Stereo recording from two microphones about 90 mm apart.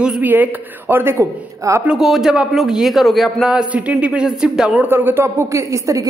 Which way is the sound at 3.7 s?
15° right (ahead or behind).